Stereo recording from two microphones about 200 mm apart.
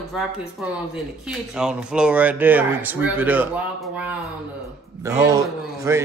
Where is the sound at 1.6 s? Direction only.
5° right (ahead or behind).